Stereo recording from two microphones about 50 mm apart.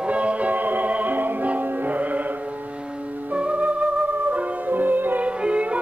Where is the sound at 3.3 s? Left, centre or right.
Right.